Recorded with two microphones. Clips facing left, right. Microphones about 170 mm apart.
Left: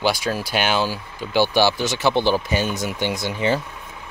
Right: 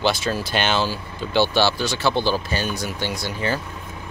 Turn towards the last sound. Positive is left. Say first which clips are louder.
# left 3 dB
turn(degrees=20)  # may be behind; listen again after turning